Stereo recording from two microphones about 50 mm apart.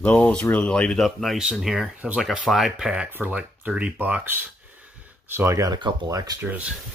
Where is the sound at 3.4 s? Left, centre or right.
Right.